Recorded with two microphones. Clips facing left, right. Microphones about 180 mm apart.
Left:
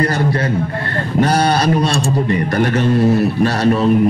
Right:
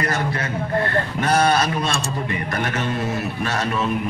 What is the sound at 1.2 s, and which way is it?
A man's voice, 35° left (ahead or behind).